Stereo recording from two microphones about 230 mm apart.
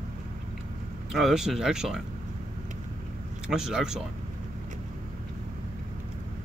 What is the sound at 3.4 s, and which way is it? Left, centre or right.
Speech, centre.